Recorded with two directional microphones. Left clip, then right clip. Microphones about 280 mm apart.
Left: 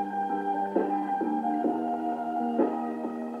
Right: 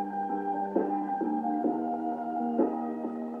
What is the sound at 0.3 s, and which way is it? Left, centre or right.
Music, centre.